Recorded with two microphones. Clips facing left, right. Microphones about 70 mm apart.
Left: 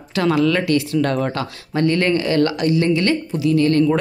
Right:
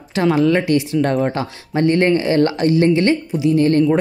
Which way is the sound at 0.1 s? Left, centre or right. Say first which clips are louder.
Right 2 dB; right.